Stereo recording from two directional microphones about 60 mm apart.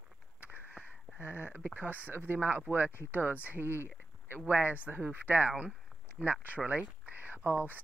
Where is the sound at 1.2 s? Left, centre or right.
Left.